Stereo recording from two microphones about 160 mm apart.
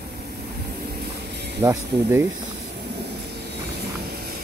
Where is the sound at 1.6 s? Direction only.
20° right (ahead or behind).